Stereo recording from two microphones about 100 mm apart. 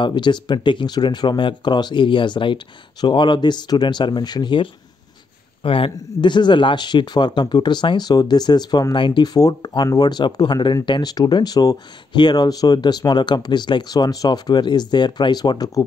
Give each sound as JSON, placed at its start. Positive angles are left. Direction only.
{"t": 0.0, "sound": "speech", "side_deg": 50}
{"t": 5.6, "sound": "speech", "side_deg": 65}
{"t": 6.2, "sound": "speech", "side_deg": 50}